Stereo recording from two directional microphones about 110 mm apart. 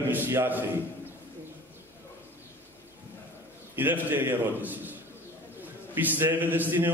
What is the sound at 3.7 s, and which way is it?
A man's voice, 20° right (ahead or behind).